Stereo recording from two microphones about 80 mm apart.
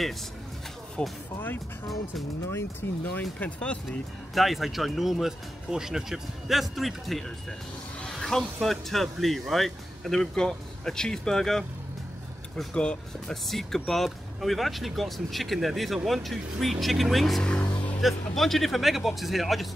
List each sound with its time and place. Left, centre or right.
1.0 s speech: centre
2.8 s speech: left
3.2 s speech: centre
4.3 s speech: centre
12.7 s speech: centre